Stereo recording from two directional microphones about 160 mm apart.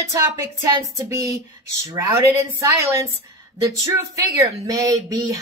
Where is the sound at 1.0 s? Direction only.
20° right (ahead or behind).